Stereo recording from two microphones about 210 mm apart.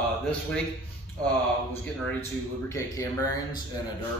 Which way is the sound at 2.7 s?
15° left (ahead or behind).